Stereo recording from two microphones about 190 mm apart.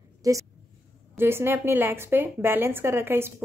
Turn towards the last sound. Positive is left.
turn(degrees=-10)  # may be behind; listen again after turning